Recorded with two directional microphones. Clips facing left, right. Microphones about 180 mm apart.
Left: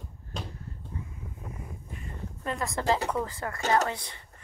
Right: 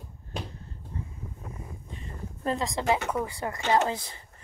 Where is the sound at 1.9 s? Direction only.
25° right (ahead or behind).